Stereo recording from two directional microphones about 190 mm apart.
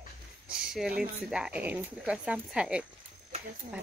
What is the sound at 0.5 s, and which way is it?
Speech, 5° right (ahead or behind).